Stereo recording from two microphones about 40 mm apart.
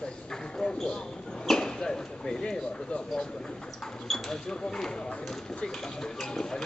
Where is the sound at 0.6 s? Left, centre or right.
Left.